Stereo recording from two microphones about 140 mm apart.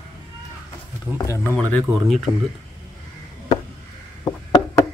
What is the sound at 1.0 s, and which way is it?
Speech, 20° left (ahead or behind).